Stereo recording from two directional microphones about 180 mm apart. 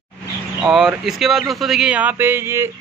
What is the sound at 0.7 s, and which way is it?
Speech, 5° right (ahead or behind).